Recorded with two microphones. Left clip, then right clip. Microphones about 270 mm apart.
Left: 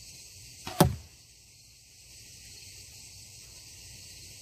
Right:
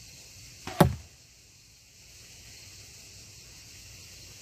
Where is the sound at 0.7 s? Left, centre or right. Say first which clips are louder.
Right 1 dB; left.